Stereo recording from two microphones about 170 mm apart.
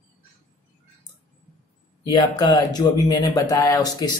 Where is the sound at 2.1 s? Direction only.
25° left (ahead or behind).